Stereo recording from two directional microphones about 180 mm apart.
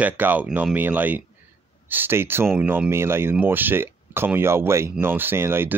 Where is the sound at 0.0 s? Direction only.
10° right (ahead or behind).